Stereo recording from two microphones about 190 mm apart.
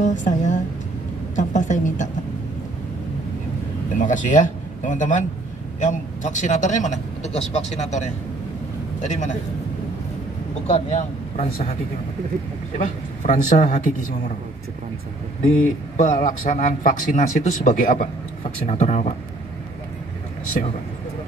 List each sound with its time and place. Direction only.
0.0 s speech: 40° left (ahead or behind)
1.3 s a sound: 40° left (ahead or behind)
4.0 s a man's voice: 40° left (ahead or behind)
10.7 s a man's voice: 40° left (ahead or behind)
12.7 s speech: 40° left (ahead or behind)
16.0 s a man's voice: 40° left (ahead or behind)